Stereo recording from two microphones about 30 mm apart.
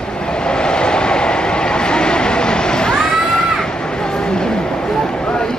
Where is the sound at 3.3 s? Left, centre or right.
Left.